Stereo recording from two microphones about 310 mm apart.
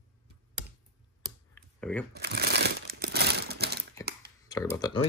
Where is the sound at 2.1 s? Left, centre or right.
Right.